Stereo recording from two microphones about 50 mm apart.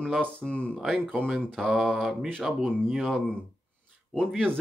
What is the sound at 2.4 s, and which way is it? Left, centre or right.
Speech, centre.